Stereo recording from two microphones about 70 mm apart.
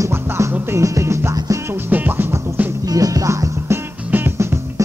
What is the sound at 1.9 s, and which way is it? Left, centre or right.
Music, right.